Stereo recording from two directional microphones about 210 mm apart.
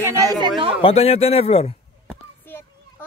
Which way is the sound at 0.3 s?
20° right (ahead or behind).